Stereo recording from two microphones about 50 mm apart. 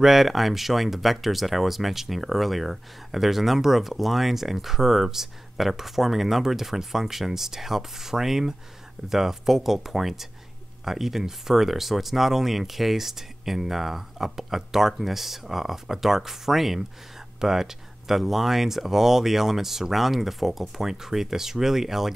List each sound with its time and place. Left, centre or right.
0.0 s speech: centre